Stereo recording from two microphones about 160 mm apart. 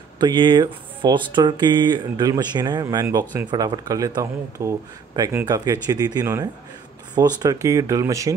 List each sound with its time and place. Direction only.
0.2 s speech: 30° right (ahead or behind)